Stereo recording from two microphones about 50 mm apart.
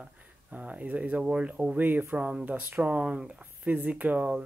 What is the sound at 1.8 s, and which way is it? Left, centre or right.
Speech, right.